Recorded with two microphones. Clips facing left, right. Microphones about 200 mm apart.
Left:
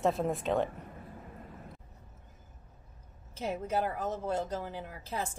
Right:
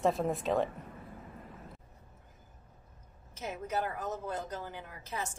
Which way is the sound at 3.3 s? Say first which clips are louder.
Left 3 dB; 30° left (ahead or behind).